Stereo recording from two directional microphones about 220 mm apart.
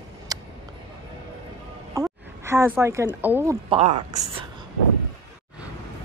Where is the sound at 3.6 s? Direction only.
30° right (ahead or behind).